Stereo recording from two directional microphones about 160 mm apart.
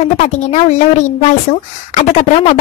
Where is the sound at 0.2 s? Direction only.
45° left (ahead or behind).